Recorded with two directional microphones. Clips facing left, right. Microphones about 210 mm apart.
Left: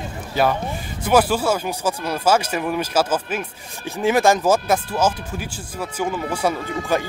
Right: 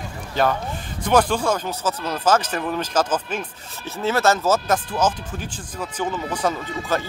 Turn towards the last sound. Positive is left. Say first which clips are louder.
# left 3 dB
turn(degrees=10)  # may be behind; listen again after turning